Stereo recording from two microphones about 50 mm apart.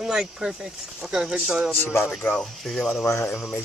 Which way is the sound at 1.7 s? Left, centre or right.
Left.